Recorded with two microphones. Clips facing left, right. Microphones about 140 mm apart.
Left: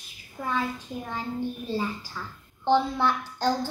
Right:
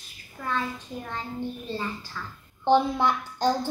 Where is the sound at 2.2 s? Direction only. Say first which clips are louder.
Even; 15° left (ahead or behind).